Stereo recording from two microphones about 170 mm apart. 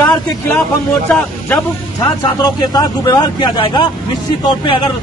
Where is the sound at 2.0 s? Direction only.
25° left (ahead or behind).